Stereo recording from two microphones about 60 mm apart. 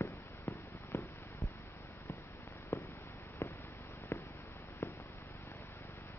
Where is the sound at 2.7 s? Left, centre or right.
Left.